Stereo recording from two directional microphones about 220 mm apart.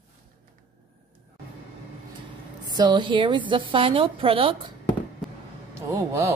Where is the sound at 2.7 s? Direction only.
20° right (ahead or behind).